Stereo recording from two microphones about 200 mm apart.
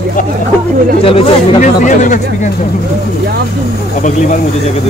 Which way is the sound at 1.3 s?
40° left (ahead or behind).